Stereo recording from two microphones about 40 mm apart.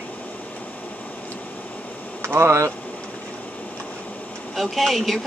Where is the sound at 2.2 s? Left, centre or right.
Right.